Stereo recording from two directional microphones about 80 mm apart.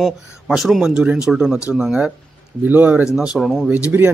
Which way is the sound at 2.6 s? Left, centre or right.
Right.